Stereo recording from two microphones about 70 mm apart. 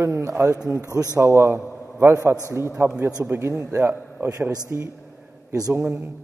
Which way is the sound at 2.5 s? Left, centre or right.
Right.